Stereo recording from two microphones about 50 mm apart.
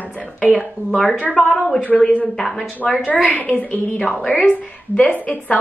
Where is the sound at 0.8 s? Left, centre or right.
Right.